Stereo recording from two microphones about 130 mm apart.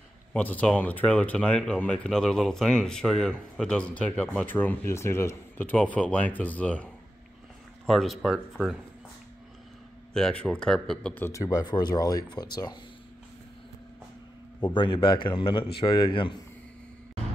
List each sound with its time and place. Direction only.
0.3 s speech: 10° left (ahead or behind)
10.1 s speech: 5° left (ahead or behind); by 12.7 s 30° left (ahead or behind)
14.6 s a man's voice: 40° left (ahead or behind)